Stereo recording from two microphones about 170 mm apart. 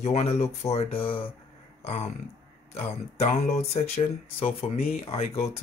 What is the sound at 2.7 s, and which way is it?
Speech, 40° left (ahead or behind).